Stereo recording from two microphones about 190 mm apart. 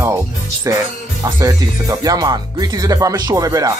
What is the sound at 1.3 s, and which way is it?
Speech, 20° right (ahead or behind).